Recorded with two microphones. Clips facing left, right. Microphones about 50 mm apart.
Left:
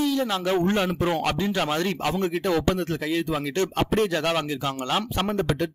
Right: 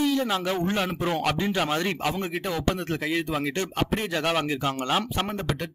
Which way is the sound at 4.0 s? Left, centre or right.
Centre.